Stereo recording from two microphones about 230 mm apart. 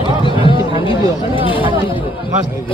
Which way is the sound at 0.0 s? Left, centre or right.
Left.